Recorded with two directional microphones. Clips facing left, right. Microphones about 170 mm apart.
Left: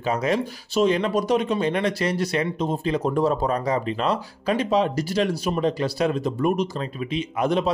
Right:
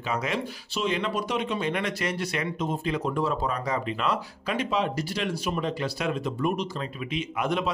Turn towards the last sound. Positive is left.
turn(degrees=35)  # may be behind; listen again after turning